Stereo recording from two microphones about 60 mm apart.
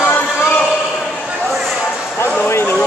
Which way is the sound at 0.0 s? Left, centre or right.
Left.